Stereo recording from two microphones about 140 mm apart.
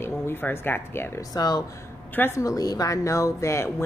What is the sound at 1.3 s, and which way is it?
Speech, 25° left (ahead or behind).